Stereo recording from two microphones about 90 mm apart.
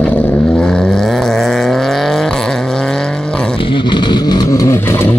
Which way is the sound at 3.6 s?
65° left (ahead or behind).